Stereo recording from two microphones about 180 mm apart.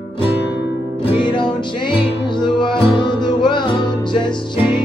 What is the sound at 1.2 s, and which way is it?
Music, 25° left (ahead or behind).